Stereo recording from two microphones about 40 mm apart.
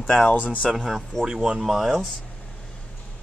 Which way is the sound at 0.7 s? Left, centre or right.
Centre.